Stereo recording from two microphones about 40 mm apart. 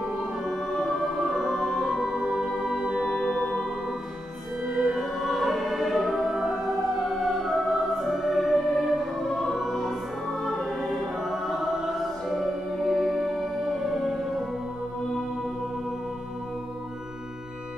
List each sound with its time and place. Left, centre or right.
0.2 s music: centre
2.8 s music: centre
3.1 s music: centre
4.6 s music: right
4.9 s choir: centre
5.9 s music: centre
6.3 s music: centre
6.7 s music: centre